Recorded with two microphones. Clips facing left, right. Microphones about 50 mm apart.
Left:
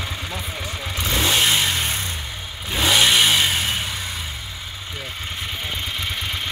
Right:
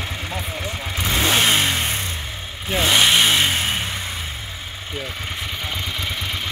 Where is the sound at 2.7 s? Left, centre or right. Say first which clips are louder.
Right 1 dB; centre.